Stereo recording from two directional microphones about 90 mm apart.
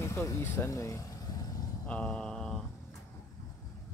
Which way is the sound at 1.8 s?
10° left (ahead or behind).